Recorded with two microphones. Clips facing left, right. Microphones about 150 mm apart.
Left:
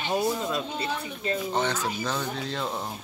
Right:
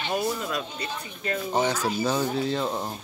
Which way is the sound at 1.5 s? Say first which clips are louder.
Right 6 dB; 10° right (ahead or behind).